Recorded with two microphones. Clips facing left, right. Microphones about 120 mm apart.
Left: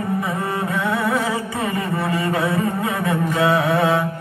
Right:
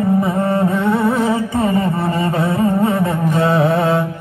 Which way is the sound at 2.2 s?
25° right (ahead or behind).